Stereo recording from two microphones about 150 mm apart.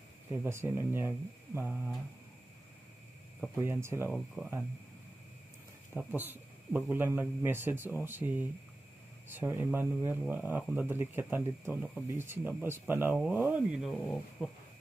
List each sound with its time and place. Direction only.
0.3 s speech: 15° right (ahead or behind)
3.6 s speech: 15° right (ahead or behind)
5.9 s speech: 10° right (ahead or behind)
13.9 s speech: 10° left (ahead or behind)